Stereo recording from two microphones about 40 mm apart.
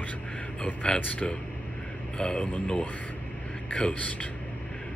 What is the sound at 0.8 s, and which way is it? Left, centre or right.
Speech, left.